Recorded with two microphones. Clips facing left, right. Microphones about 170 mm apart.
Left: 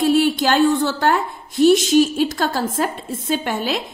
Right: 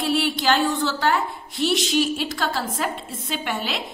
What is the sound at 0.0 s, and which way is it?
A woman's voice, 45° left (ahead or behind).